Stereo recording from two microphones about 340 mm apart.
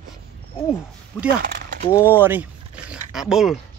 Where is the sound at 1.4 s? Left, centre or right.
Right.